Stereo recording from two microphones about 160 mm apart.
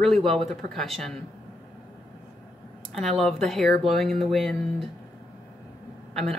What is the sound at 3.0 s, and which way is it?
A woman's voice, centre (ahead or behind).